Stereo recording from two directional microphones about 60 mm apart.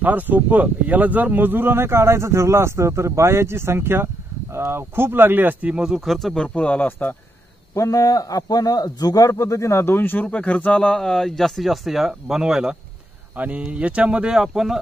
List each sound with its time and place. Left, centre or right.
0.0 s speech: right
5.7 s speech: centre
6.1 s speech: centre
6.4 s speech: left
7.7 s a man's voice: left; by 11.0 s centre
11.0 s speech: centre
13.4 s speech: right; by 14.8 s centre